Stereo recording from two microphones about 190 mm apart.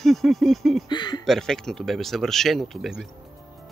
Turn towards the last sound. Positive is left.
turn(degrees=0)  # may be behind; listen again after turning